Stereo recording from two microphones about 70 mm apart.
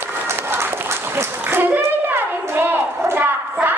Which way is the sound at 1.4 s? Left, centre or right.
Right.